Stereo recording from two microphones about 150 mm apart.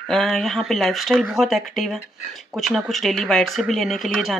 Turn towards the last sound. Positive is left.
turn(degrees=0)  # may be behind; listen again after turning